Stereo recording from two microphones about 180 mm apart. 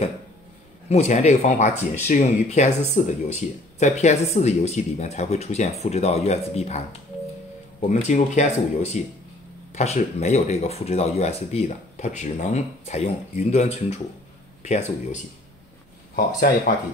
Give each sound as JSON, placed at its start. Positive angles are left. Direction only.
{"t": 0.8, "sound": "speech", "side_deg": 40}
{"t": 7.9, "sound": "speech", "side_deg": 40}
{"t": 16.3, "sound": "speech", "side_deg": 55}